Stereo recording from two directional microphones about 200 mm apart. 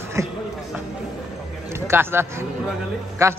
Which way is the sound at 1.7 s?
10° right (ahead or behind).